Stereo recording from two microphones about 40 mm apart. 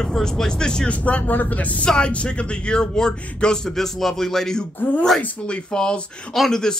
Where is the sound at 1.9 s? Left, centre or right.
Left.